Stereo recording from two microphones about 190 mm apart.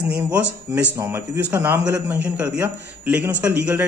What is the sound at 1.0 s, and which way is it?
A man's voice, 15° right (ahead or behind).